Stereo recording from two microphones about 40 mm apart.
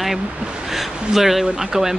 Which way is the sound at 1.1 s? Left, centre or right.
Centre.